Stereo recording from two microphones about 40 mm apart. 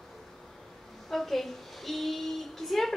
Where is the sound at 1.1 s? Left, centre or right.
Centre.